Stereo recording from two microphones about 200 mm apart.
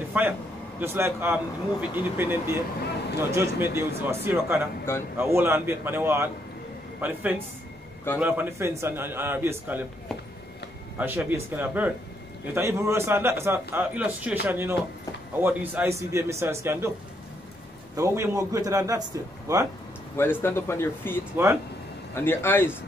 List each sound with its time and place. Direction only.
0.2 s a man's voice: 10° right (ahead or behind)
11.0 s a man's voice: 10° right (ahead or behind)
17.9 s a man's voice: 15° right (ahead or behind)
20.2 s speech: 10° left (ahead or behind)